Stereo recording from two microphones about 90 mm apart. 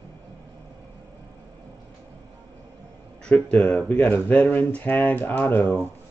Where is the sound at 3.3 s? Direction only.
15° left (ahead or behind).